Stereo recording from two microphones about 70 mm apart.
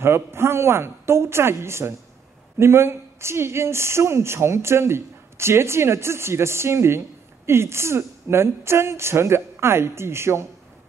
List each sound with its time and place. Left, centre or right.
0.0 s speech: right